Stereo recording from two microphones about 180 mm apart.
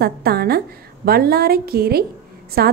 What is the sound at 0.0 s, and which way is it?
A woman's voice, 60° right (ahead or behind).